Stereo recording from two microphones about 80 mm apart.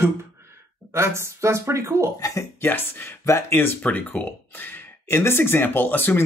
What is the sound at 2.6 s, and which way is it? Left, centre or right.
Speech, left.